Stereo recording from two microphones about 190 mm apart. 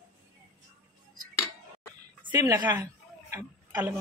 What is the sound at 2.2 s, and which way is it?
Speech, 20° right (ahead or behind).